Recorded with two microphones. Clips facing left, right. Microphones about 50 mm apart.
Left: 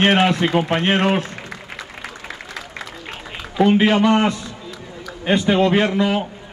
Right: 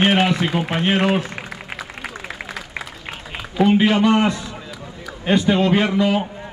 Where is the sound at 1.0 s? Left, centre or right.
Centre.